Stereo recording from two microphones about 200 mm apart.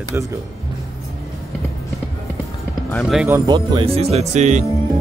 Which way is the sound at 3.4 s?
25° right (ahead or behind).